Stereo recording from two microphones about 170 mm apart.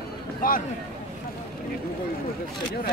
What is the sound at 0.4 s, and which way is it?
Speech, 55° left (ahead or behind).